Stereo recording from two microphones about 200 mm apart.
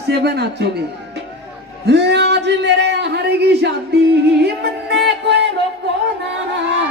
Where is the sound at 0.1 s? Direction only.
55° right (ahead or behind).